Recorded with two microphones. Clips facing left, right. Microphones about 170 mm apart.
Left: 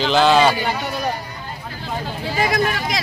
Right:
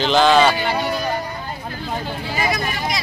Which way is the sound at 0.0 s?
5° left (ahead or behind).